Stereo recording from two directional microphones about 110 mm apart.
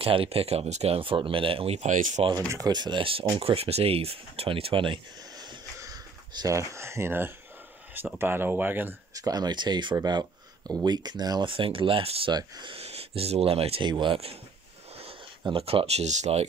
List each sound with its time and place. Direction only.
0.0 s speech: 55° right (ahead or behind); by 2.2 s 80° right
2.5 s speech: 40° right (ahead or behind)
5.8 s speech: 30° right (ahead or behind)
9.1 s speech: 35° right (ahead or behind); by 12.3 s 60° right (ahead or behind)
12.3 s speech: 40° right (ahead or behind)
12.7 s speech: 65° right (ahead or behind)
13.8 s speech: 45° right (ahead or behind)
15.5 s speech: 60° right (ahead or behind); by 16.4 s 80° right